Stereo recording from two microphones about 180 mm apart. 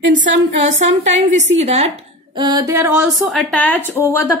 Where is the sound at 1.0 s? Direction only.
40° right (ahead or behind).